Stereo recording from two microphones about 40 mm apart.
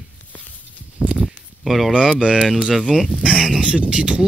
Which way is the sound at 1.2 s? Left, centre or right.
Centre.